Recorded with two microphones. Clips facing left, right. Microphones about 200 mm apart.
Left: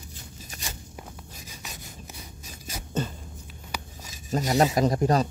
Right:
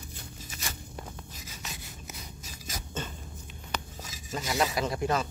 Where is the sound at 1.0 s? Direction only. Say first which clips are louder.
Even; 15° left (ahead or behind).